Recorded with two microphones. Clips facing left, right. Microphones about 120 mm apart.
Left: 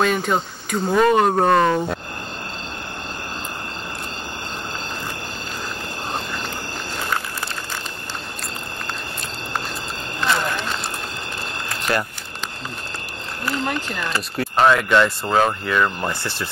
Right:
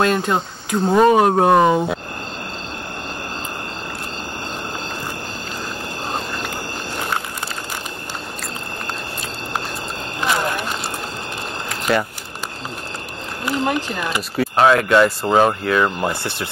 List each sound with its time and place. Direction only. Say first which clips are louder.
0.0 s speech: right 2 dB; centre (ahead or behind)
0.8 s speech: right 3 dB; 20° right (ahead or behind)
1.1 s speech: right 3 dB; 10° right (ahead or behind)
10.2 s run: right 1 dB; 15° right (ahead or behind)
11.9 s speech: right 4 dB; centre (ahead or behind)
13.5 s speech: right 4 dB; 15° right (ahead or behind)
14.3 s speech: right 2 dB; centre (ahead or behind)
16.1 s speech: right 2 dB; 20° right (ahead or behind)